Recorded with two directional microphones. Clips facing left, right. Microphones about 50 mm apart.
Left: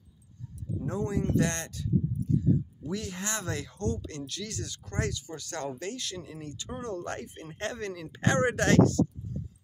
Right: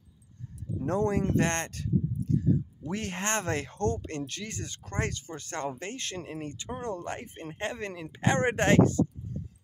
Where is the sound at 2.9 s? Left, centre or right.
Right; by 8.4 s centre.